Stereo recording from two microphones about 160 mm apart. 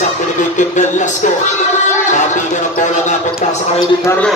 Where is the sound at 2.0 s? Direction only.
50° left (ahead or behind).